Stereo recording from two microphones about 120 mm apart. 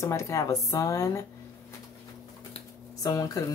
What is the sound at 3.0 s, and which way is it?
Speech, 30° left (ahead or behind).